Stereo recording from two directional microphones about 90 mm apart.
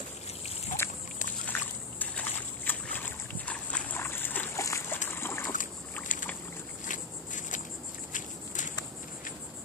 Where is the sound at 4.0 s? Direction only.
25° left (ahead or behind).